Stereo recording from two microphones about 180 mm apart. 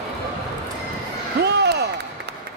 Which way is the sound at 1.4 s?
65° right (ahead or behind).